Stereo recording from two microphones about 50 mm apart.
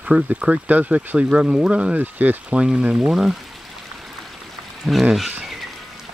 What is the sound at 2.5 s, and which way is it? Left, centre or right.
Speech, centre.